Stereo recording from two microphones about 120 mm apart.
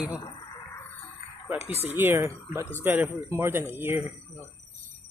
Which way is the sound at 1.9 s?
20° right (ahead or behind).